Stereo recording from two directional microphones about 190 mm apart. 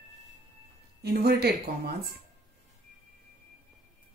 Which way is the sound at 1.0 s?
60° right (ahead or behind).